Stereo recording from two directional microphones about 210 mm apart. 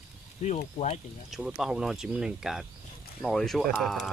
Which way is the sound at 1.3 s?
Centre (ahead or behind).